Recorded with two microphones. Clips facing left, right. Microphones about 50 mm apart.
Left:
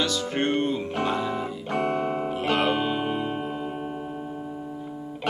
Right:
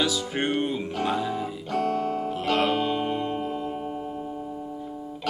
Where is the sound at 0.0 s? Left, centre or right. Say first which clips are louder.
Left 1 dB; centre.